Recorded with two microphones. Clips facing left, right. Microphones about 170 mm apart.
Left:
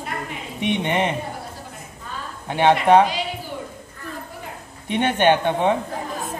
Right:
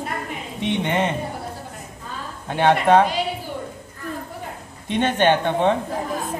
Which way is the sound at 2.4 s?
15° left (ahead or behind).